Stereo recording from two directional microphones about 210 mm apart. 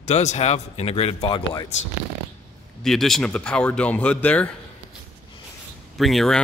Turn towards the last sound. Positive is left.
turn(degrees=0)  # may be behind; listen again after turning